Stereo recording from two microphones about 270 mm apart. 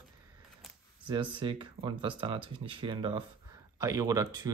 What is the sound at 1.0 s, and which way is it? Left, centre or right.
Speech, centre.